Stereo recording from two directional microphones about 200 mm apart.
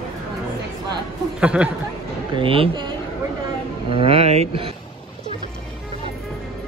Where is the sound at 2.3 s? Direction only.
25° right (ahead or behind).